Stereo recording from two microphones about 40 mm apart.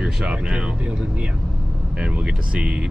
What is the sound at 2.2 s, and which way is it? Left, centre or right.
Speech, right.